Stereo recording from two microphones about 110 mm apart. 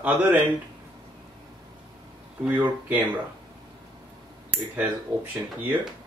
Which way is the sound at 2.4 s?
15° right (ahead or behind).